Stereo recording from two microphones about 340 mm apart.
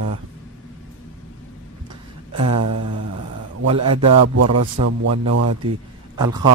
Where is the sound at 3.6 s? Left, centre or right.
Right.